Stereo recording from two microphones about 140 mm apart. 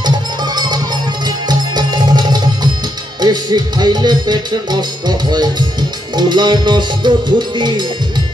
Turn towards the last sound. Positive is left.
turn(degrees=-30)  # may be behind; listen again after turning